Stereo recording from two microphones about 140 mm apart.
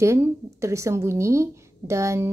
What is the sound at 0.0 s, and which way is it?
Speech, 20° right (ahead or behind).